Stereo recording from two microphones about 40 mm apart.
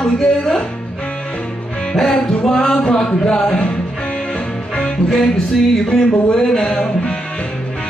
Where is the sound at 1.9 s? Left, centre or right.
Centre.